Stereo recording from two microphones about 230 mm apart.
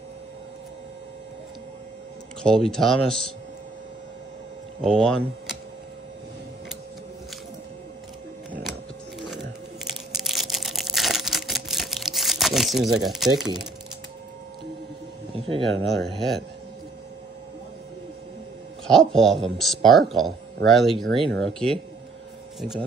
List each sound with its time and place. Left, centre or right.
2.4 s speech: centre
4.8 s speech: centre
10.1 s camera: centre
13.1 s speech: centre
15.3 s music: right
15.9 s speech: centre
18.9 s speech: centre